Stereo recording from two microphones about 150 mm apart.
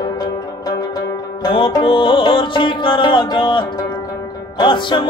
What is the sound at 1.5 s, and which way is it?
Music, 35° left (ahead or behind).